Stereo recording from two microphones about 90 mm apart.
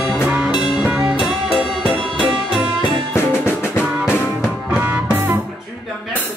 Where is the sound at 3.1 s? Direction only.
30° left (ahead or behind).